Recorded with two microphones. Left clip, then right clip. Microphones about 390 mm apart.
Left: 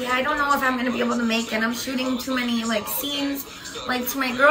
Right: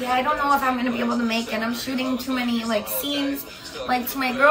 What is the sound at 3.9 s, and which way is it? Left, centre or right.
Speech, centre.